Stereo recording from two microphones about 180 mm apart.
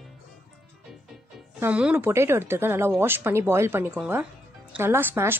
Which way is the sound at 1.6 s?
5° right (ahead or behind).